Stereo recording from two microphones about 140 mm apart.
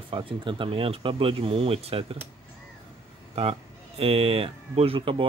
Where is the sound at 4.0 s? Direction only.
45° right (ahead or behind).